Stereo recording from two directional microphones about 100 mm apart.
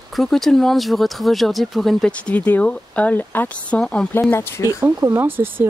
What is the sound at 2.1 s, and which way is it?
Speech, 15° left (ahead or behind).